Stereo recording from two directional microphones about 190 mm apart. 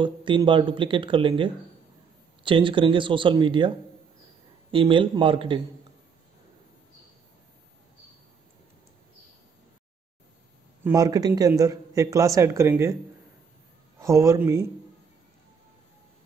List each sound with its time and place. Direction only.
0.0 s speech: 25° right (ahead or behind)
10.8 s speech: 15° right (ahead or behind)
13.9 s speech: 15° right (ahead or behind)